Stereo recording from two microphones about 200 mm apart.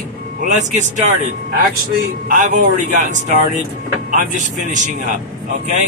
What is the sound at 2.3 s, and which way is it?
Speech, 40° right (ahead or behind).